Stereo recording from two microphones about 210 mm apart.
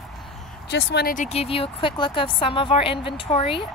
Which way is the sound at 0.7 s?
50° left (ahead or behind).